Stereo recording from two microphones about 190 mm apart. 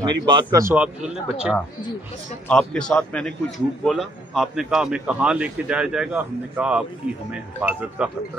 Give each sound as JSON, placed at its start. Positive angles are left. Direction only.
{"t": 0.0, "sound": "a man's voice", "side_deg": -25}
{"t": 8.0, "sound": "a man's voice", "side_deg": -5}